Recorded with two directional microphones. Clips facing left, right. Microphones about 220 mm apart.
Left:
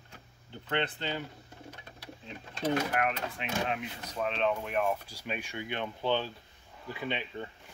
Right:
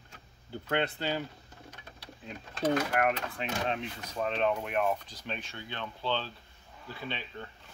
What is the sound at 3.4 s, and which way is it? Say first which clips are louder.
Speech: even; 30° right (ahead or behind).